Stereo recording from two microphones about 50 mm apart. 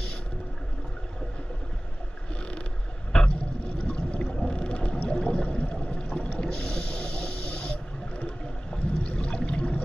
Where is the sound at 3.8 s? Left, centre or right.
Left.